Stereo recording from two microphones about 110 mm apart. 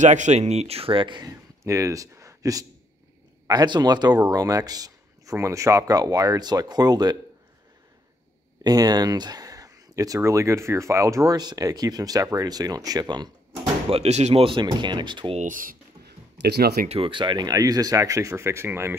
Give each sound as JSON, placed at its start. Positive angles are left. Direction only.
{"t": 0.0, "sound": "speech", "side_deg": -90}
{"t": 1.6, "sound": "speech", "side_deg": -30}
{"t": 8.6, "sound": "speech", "side_deg": -35}
{"t": 13.8, "sound": "speech", "side_deg": -70}
{"t": 14.4, "sound": "speech", "side_deg": -45}
{"t": 16.8, "sound": "speech", "side_deg": -70}
{"t": 17.1, "sound": "speech", "side_deg": -45}
{"t": 17.5, "sound": "speech", "side_deg": -35}